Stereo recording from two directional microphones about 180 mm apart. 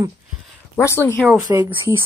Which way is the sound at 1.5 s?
15° right (ahead or behind).